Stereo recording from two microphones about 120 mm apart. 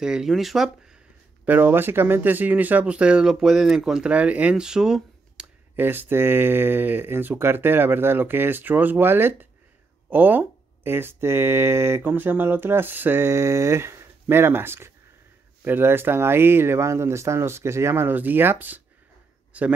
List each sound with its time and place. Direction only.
0.0 s speech: 5° right (ahead or behind)
1.4 s speech: 15° right (ahead or behind)
5.8 s speech: 15° right (ahead or behind)